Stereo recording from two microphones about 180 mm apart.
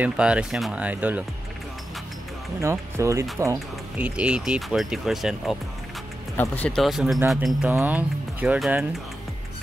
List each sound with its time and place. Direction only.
0.0 s speech: 5° right (ahead or behind)
2.6 s speech: 15° right (ahead or behind)
3.5 s speech: 5° right (ahead or behind)
6.3 s speech: 10° left (ahead or behind); by 8.8 s 10° right (ahead or behind)